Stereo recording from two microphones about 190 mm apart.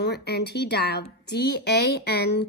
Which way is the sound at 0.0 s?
60° left (ahead or behind).